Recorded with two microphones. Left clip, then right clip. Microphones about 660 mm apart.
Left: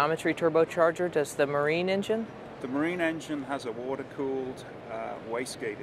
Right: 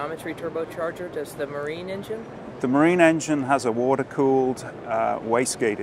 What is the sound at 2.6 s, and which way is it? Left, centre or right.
Speech, right.